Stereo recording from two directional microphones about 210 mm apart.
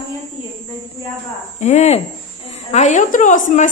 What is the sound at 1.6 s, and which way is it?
A woman's voice, 30° left (ahead or behind).